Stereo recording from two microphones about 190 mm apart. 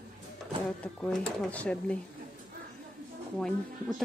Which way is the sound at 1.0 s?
5° left (ahead or behind).